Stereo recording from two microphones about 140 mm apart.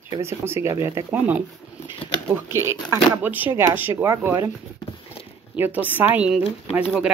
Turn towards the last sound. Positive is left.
turn(degrees=-5)  # may be behind; listen again after turning